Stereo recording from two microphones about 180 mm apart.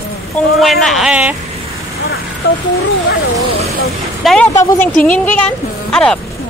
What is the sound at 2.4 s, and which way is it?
Speech, 60° left (ahead or behind).